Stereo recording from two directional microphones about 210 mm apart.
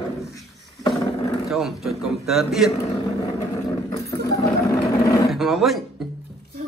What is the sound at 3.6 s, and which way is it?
Roar, 15° left (ahead or behind).